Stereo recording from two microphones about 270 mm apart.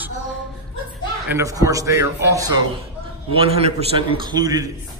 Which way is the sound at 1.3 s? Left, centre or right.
Centre.